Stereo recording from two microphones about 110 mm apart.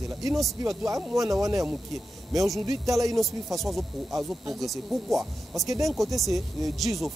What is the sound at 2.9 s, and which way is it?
Speech, 30° right (ahead or behind).